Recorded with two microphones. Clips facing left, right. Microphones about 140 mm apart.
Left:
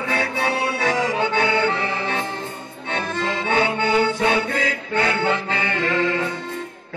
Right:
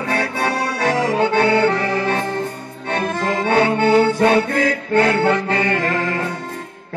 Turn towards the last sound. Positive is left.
turn(degrees=-45)  # may be behind; listen again after turning